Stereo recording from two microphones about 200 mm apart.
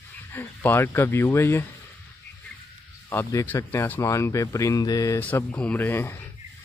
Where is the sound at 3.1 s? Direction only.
10° left (ahead or behind).